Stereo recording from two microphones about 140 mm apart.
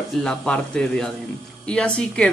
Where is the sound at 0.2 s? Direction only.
5° left (ahead or behind).